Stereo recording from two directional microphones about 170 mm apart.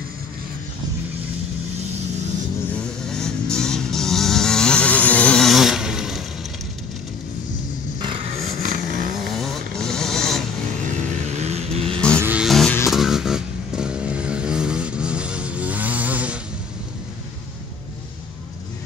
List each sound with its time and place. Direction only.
2.7 s vehicle: 5° left (ahead or behind)
8.5 s vehicle: 55° right (ahead or behind)
9.2 s a sound: centre (ahead or behind)
11.2 s vehicle: 40° right (ahead or behind)
12.2 s music: 10° right (ahead or behind)
12.4 s vehicle: centre (ahead or behind)